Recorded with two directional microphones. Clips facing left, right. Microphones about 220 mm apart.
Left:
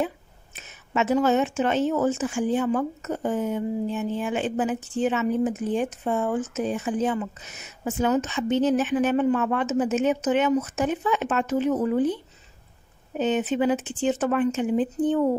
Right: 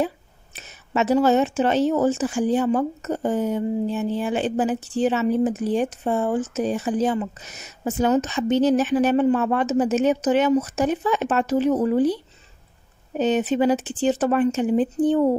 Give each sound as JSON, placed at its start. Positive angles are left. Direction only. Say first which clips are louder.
{"t": 0.0, "sound": "speech", "louder": "right 3 dB", "side_deg": -35}
{"t": 13.2, "sound": "speech", "louder": "right 3 dB", "side_deg": -35}